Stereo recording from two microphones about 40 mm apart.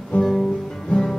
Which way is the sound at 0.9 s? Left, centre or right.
Left.